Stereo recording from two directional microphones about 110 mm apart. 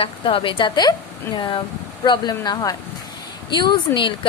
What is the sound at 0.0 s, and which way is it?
A woman's voice, 55° left (ahead or behind).